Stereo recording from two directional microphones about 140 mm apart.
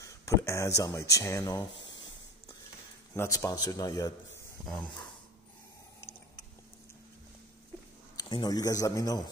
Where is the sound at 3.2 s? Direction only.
25° left (ahead or behind).